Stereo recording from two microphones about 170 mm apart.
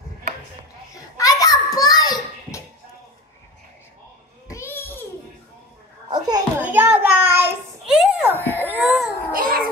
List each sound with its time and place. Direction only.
0.9 s children playing: 20° left (ahead or behind)
1.8 s a sound: 20° left (ahead or behind)
4.5 s babbling: 15° left (ahead or behind)
6.0 s a sound: 25° right (ahead or behind)
6.6 s child singing: 10° right (ahead or behind)
8.3 s baby cry: 10° left (ahead or behind)
8.6 s baby cry: 10° right (ahead or behind)
9.3 s babbling: 60° right (ahead or behind)